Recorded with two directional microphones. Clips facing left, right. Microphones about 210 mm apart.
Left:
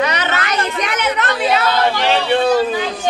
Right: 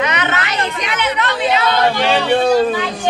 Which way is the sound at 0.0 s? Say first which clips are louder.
Even; 35° left (ahead or behind).